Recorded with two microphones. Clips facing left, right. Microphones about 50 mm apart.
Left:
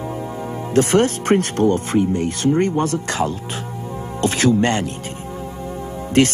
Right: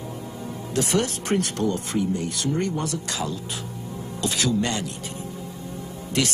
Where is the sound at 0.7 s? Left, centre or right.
Left.